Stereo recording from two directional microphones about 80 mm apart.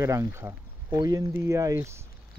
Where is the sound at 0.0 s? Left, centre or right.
Right.